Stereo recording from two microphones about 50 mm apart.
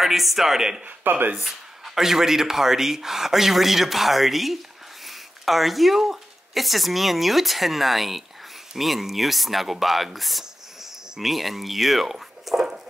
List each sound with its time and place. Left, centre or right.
0.0 s speech: centre
1.1 s speech: right
1.4 s speech: centre